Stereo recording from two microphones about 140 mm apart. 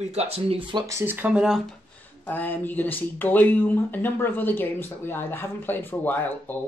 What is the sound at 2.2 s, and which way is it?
Speech, 10° left (ahead or behind).